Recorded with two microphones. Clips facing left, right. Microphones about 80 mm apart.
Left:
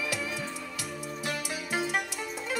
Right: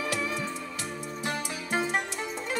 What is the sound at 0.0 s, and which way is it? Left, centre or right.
Music, right.